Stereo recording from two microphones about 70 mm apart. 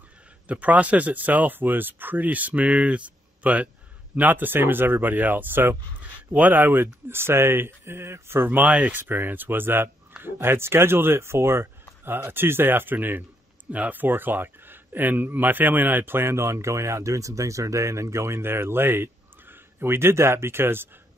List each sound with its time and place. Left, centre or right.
0.5 s speech: right